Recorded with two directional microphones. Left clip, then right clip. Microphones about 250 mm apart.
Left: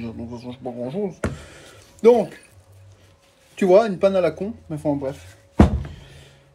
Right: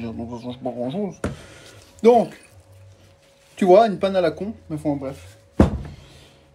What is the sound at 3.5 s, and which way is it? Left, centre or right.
Speech, centre.